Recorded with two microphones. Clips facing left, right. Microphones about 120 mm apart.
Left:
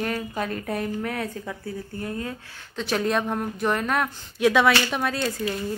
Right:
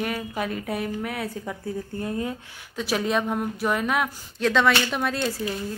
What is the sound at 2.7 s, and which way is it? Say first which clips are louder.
Speech: even; 5° right (ahead or behind).